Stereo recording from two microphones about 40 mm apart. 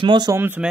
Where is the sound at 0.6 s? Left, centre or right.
Right.